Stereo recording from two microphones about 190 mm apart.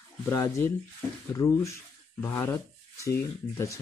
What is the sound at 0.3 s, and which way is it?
Speech, 15° left (ahead or behind).